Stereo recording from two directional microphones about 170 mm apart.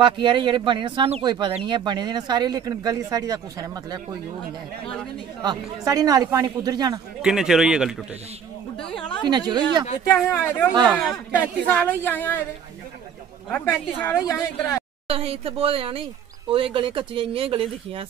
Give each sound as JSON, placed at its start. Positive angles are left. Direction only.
{"t": 0.0, "sound": "speech", "side_deg": -30}
{"t": 5.4, "sound": "speech", "side_deg": -25}
{"t": 7.2, "sound": "a man's voice", "side_deg": -5}
{"t": 9.3, "sound": "speech", "side_deg": -25}
{"t": 10.2, "sound": "speech", "side_deg": 15}
{"t": 13.5, "sound": "speech", "side_deg": 10}
{"t": 15.0, "sound": "speech", "side_deg": -35}